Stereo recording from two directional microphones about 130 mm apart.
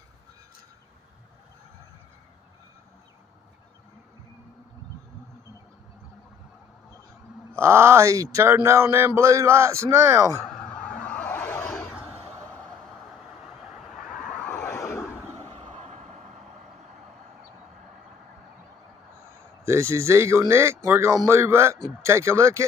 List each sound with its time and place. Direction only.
7.5 s speech: 20° right (ahead or behind)
10.4 s a sound: 5° left (ahead or behind)
13.9 s a sound: centre (ahead or behind)
15.0 s vehicle: 15° left (ahead or behind)
15.7 s vehicle: 60° right (ahead or behind)
19.6 s speech: 20° right (ahead or behind)